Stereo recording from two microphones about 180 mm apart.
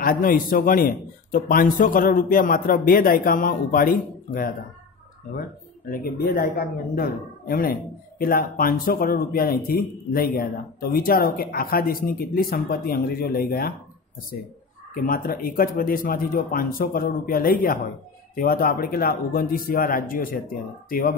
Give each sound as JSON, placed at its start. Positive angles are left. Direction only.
{"t": 0.0, "sound": "a man's voice", "side_deg": 50}
{"t": 5.9, "sound": "speech", "side_deg": 55}
{"t": 15.0, "sound": "a man's voice", "side_deg": 55}